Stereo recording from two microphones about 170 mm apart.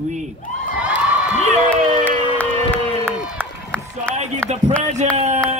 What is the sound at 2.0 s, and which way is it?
Crowd, 10° left (ahead or behind).